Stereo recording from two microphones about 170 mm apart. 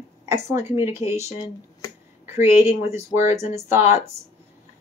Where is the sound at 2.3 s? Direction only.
15° right (ahead or behind).